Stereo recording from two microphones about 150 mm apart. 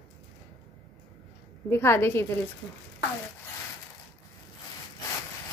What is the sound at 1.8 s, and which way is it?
Speech, 15° left (ahead or behind).